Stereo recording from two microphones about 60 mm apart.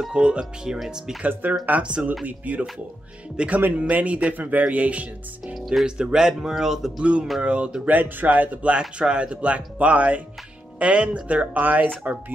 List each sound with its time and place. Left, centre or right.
0.1 s speech: centre
1.2 s speech: right
5.5 s speech: centre
7.0 s speech: centre